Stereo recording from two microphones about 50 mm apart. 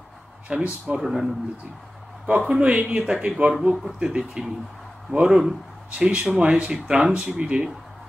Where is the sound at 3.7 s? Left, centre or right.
Centre.